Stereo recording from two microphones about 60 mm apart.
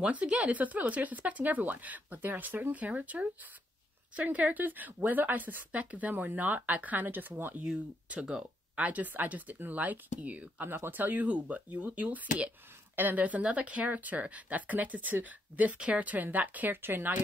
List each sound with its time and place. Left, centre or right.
0.0 s speech: centre
8.1 s speech: right
10.7 s speech: right